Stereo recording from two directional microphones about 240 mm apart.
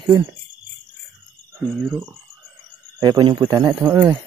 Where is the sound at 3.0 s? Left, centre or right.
Centre.